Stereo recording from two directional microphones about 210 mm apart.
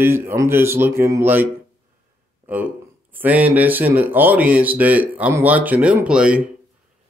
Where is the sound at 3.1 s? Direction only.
10° right (ahead or behind).